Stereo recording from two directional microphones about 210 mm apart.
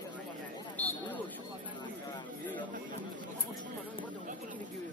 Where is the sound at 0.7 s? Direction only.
10° left (ahead or behind).